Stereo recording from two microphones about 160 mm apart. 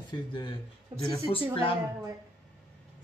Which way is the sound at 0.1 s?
30° left (ahead or behind).